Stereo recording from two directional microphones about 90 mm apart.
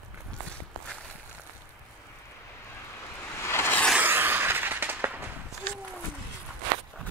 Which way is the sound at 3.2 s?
30° left (ahead or behind).